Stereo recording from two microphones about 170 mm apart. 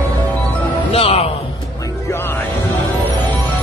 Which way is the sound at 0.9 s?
35° left (ahead or behind).